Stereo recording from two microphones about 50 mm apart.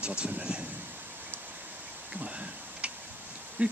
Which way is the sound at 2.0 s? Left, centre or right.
Right.